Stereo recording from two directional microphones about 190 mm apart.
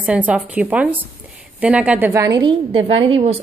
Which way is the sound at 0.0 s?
5° right (ahead or behind).